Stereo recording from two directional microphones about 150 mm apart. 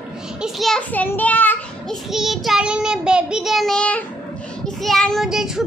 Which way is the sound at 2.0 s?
Centre (ahead or behind).